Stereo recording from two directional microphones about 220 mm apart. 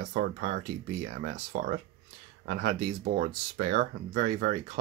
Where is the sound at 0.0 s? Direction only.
40° right (ahead or behind).